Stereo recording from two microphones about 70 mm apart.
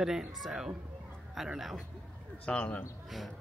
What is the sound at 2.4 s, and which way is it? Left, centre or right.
Speech, centre.